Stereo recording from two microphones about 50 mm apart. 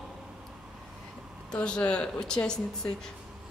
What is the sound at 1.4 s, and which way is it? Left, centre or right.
Speech, centre.